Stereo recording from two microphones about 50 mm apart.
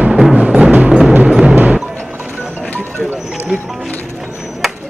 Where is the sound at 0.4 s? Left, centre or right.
Right.